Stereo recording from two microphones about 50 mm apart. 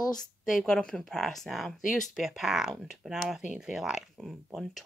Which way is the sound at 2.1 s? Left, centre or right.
Centre.